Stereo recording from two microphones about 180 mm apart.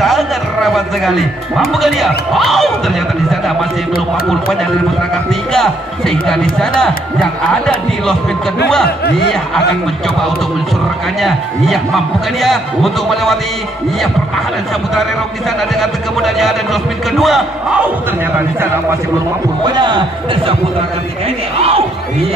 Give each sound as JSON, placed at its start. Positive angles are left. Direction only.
{"t": 0.0, "sound": "a sound", "side_deg": 0}
{"t": 0.7, "sound": "speech", "side_deg": 0}
{"t": 11.1, "sound": "speech", "side_deg": 0}
{"t": 15.7, "sound": "speech", "side_deg": 0}
{"t": 19.6, "sound": "speech", "side_deg": -25}